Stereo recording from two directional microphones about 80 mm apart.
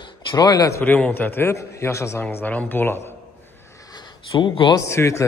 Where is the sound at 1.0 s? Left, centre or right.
Left.